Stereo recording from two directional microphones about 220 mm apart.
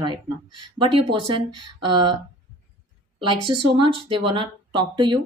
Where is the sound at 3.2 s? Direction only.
20° right (ahead or behind).